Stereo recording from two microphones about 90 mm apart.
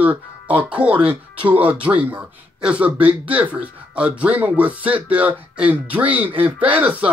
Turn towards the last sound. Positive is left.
turn(degrees=-15)  # may be behind; listen again after turning